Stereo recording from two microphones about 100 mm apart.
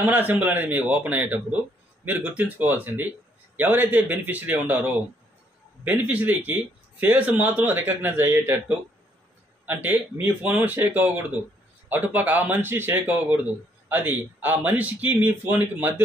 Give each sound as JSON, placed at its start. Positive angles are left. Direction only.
{"t": 0.0, "sound": "speech", "side_deg": -15}
{"t": 9.7, "sound": "a man's voice", "side_deg": -20}